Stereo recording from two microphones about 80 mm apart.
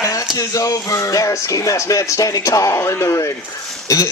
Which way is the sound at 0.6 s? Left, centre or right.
Left.